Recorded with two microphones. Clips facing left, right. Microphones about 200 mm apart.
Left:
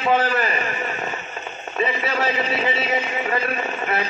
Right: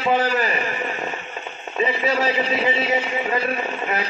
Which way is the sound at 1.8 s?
15° right (ahead or behind).